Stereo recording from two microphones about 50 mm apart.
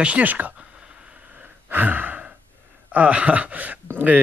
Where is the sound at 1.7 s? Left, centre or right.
Right.